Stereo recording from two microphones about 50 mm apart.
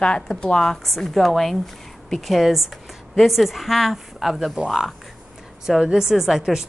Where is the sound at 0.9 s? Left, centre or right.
Centre.